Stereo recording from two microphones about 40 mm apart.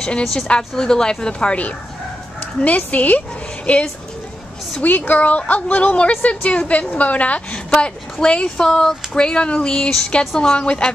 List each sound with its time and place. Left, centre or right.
0.2 s a woman's voice: centre
0.5 s a woman's voice: centre
2.6 s speech: left
4.8 s a woman's voice: left; by 10.6 s centre
10.6 s a woman's voice: left